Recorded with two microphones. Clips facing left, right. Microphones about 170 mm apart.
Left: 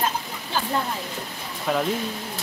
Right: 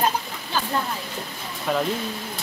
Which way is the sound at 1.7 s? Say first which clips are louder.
Even; centre (ahead or behind).